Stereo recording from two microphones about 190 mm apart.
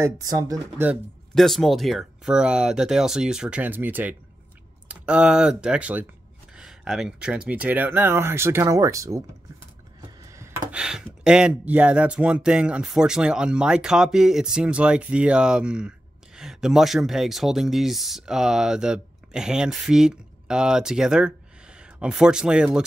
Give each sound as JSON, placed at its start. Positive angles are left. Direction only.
{"t": 0.0, "sound": "speech", "side_deg": -20}
{"t": 0.8, "sound": "speech", "side_deg": 0}
{"t": 10.3, "sound": "speech", "side_deg": -15}